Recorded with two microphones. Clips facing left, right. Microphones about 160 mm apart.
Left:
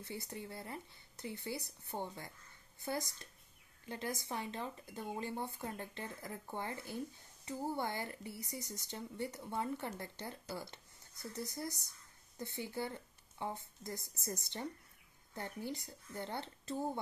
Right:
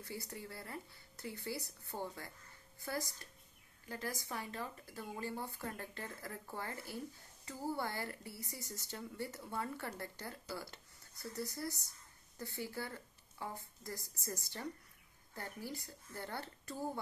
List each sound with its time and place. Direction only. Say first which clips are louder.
0.0 s a woman's voice: left 1 dB; 20° left (ahead or behind)